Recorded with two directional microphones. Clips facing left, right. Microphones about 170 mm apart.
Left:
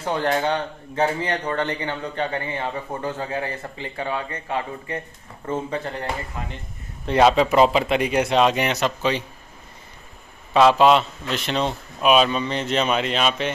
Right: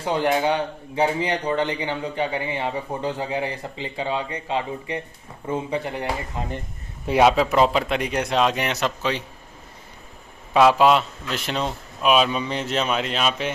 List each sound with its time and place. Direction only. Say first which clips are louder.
0.0 s speech: right 1 dB; 10° right (ahead or behind)
6.4 s speech: right 3 dB; 25° right (ahead or behind)
7.1 s a man's voice: left 1 dB; 5° right (ahead or behind)
10.5 s a man's voice: left 1 dB; 10° right (ahead or behind)